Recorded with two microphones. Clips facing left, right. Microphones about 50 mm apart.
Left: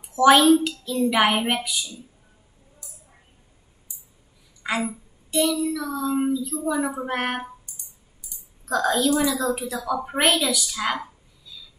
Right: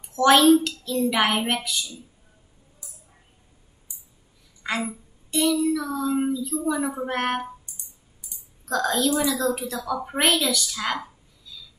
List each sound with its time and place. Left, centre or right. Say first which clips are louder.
0.0 s a woman's voice: left 1 dB; centre
4.6 s a woman's voice: left 2 dB; centre
8.6 s a woman's voice: left 2 dB; centre